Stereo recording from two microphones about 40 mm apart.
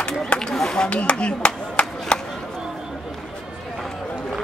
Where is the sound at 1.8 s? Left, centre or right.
Centre.